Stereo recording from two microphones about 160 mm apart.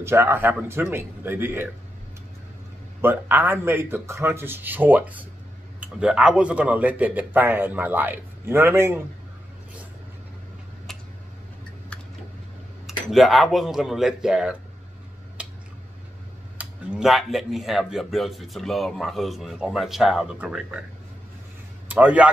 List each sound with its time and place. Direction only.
0.0 s speech: 15° right (ahead or behind)
3.0 s speech: 10° right (ahead or behind)
13.1 s speech: centre (ahead or behind)
15.4 s a sound: 10° right (ahead or behind)
16.5 s speech: 5° right (ahead or behind)
21.8 s a man's voice: 10° right (ahead or behind)